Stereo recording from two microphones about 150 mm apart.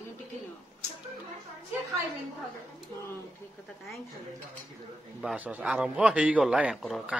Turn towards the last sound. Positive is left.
turn(degrees=0)  # may be behind; listen again after turning